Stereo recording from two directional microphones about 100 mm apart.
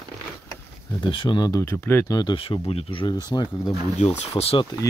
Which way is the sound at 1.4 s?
35° left (ahead or behind).